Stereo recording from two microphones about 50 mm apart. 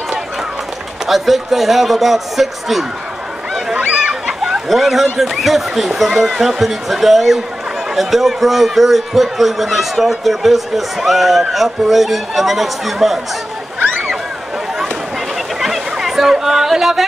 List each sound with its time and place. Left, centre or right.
1.0 s a man's voice: centre
4.1 s a man's voice: centre
15.6 s chatter: centre